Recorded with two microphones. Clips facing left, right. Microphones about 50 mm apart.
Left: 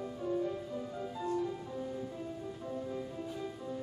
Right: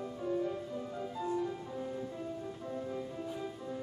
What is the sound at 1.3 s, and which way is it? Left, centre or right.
Music, centre.